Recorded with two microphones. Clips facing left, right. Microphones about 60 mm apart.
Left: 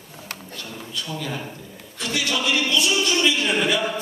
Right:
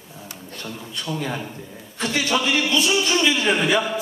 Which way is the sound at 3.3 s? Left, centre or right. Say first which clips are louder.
Right 2 dB; right.